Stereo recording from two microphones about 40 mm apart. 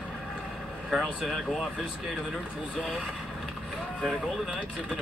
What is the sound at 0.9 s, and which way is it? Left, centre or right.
Speech, centre.